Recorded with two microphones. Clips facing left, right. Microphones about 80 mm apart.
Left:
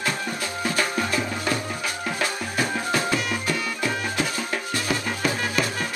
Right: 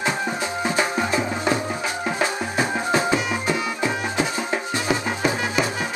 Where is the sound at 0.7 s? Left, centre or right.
Centre.